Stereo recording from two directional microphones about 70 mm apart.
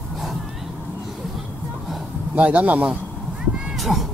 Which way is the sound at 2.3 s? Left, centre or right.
Centre.